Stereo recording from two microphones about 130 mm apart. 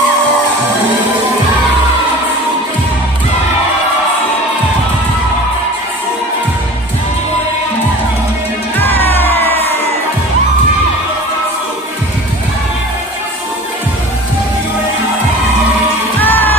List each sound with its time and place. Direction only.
8.7 s music: 15° left (ahead or behind)
16.2 s music: 15° left (ahead or behind)